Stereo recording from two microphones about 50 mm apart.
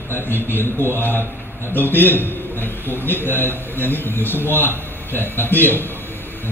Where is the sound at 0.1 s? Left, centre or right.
Left.